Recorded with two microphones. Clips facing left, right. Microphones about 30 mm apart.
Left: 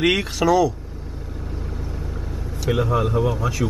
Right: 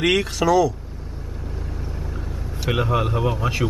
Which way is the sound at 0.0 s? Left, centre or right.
Centre.